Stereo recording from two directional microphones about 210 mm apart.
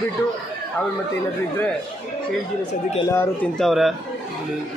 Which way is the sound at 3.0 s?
15° left (ahead or behind).